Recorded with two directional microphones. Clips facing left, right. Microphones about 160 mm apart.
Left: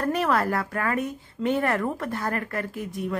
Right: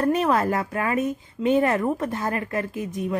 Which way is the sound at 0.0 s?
20° right (ahead or behind).